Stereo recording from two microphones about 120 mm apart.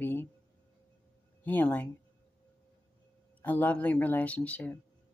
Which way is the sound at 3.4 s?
15° left (ahead or behind).